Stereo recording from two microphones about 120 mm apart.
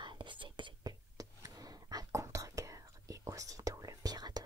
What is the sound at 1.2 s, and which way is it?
Whispering, 30° right (ahead or behind).